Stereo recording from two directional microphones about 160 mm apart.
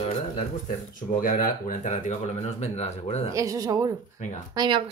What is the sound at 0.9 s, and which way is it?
Speech, 55° left (ahead or behind).